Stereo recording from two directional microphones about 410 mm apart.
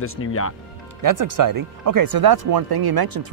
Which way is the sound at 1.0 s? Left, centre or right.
Right.